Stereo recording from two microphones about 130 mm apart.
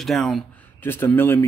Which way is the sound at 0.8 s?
15° left (ahead or behind).